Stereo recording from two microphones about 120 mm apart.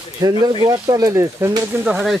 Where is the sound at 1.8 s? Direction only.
10° right (ahead or behind).